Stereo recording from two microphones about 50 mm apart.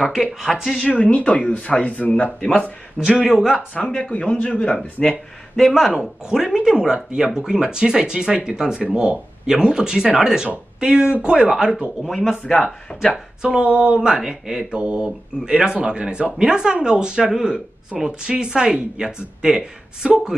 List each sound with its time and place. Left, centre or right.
0.1 s speech: centre
0.8 s speech: left
3.2 s speech: centre
3.7 s speech: left
5.0 s speech: centre
5.6 s speech: centre
6.2 s speech: centre
11.1 s a sound: right
11.5 s speech: centre
12.0 s speech: centre
13.4 s speech: centre
13.7 s a sound: right
15.0 s speech: centre